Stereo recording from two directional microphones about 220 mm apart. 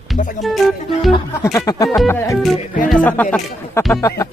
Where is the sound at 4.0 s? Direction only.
15° left (ahead or behind).